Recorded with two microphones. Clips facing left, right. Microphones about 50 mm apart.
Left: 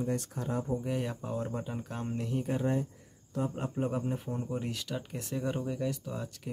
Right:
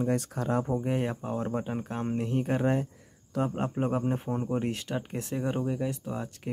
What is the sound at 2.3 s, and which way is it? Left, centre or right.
Speech, right.